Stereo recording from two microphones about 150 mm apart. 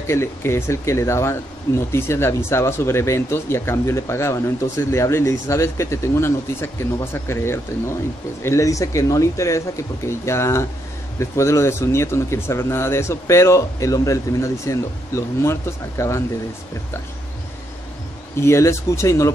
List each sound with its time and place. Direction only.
0.0 s speech: 15° left (ahead or behind)
18.3 s speech: 20° left (ahead or behind)